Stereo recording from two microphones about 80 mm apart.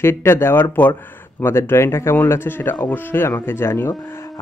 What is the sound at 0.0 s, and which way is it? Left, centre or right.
A man's voice, left.